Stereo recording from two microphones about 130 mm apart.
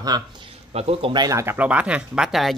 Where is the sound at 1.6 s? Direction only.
10° right (ahead or behind).